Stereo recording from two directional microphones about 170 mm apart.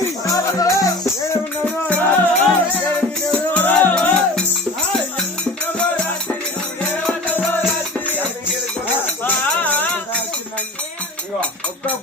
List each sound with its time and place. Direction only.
0.3 s speech: 20° left (ahead or behind)
1.9 s music: 10° left (ahead or behind)
6.9 s music: 10° left (ahead or behind)
9.2 s a sound: 10° left (ahead or behind)